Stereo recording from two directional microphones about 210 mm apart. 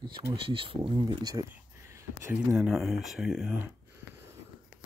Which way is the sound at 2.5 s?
Centre (ahead or behind).